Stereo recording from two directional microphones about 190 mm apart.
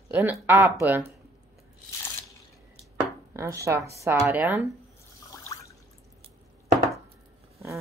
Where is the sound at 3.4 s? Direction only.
15° right (ahead or behind).